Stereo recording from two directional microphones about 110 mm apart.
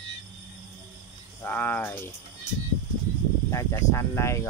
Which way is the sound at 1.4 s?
15° left (ahead or behind).